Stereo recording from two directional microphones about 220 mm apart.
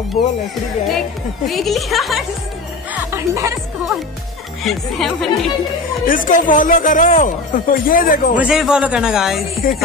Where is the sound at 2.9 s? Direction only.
10° right (ahead or behind).